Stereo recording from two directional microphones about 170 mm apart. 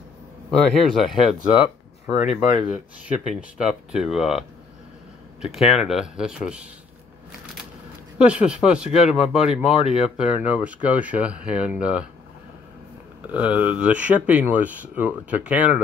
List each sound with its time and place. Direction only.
0.5 s speech: centre (ahead or behind)
2.0 s speech: 40° left (ahead or behind)
3.3 s speech: 5° right (ahead or behind)
8.3 s speech: 5° right (ahead or behind)
13.3 s speech: 10° right (ahead or behind)